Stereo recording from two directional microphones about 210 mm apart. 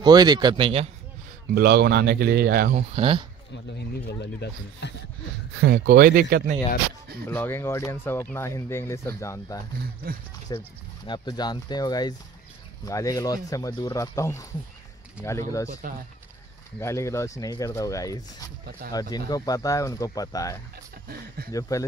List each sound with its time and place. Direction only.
0.0 s a man's voice: 20° right (ahead or behind)
1.5 s speech: 50° right (ahead or behind)
2.7 s a man's voice: 30° right (ahead or behind)
3.5 s speech: 50° left (ahead or behind)
5.6 s speech: 45° right (ahead or behind)
7.2 s speech: 10° left (ahead or behind)
16.8 s speech: 15° left (ahead or behind)